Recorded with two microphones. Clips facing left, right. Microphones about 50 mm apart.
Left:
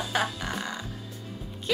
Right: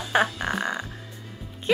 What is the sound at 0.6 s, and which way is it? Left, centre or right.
Music, right.